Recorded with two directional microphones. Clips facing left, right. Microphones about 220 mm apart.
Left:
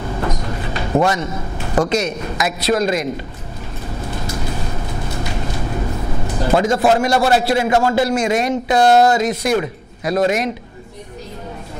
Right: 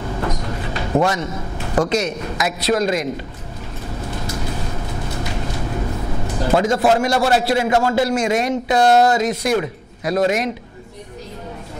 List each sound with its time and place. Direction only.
0.2 s a sound: 20° left (ahead or behind)
1.8 s a man's voice: 15° left (ahead or behind)
6.3 s a man's voice: 20° left (ahead or behind)
8.8 s a man's voice: 25° left (ahead or behind)